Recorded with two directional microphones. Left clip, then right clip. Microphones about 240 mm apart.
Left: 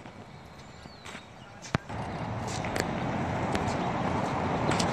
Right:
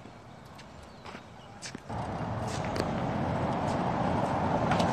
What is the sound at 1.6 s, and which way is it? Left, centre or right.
Vehicle, right.